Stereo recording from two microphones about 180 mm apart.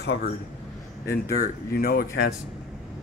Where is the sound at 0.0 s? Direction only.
65° left (ahead or behind).